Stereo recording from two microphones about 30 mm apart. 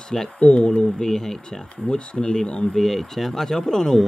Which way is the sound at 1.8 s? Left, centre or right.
Left.